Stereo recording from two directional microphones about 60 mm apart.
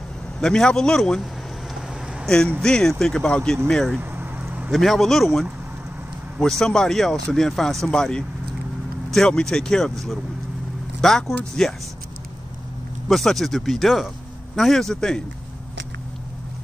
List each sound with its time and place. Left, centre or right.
0.4 s speech: centre
2.2 s speech: centre
9.3 s speech: centre
11.0 s speech: centre
13.1 s speech: centre